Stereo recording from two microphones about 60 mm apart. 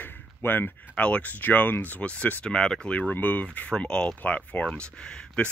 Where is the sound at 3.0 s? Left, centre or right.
Left.